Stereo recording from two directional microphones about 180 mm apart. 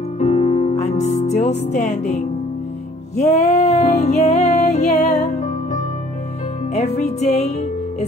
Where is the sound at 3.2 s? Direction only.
40° left (ahead or behind).